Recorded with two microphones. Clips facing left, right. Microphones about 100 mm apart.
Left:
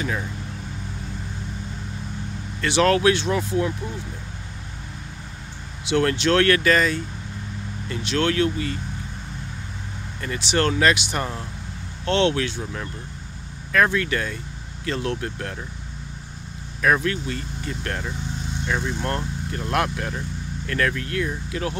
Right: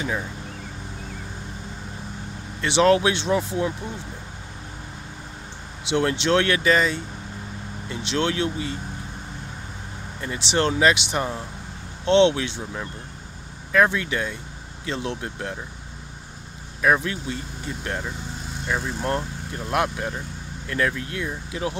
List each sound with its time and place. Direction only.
0.0 s speech: 15° right (ahead or behind)
2.6 s speech: 20° right (ahead or behind)
5.9 s speech: 25° right (ahead or behind)
10.2 s speech: 20° right (ahead or behind)
13.9 s speech: 15° right (ahead or behind)
16.8 s speech: 15° right (ahead or behind)